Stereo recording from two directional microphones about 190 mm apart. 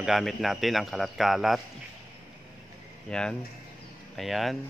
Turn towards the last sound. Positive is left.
turn(degrees=0)  # may be behind; listen again after turning